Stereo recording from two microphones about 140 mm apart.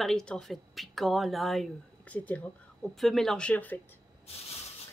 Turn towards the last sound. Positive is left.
turn(degrees=10)  # may be behind; listen again after turning